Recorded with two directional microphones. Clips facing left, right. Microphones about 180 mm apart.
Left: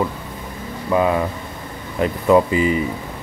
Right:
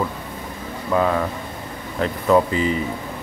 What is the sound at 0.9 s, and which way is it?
Speech, 10° left (ahead or behind).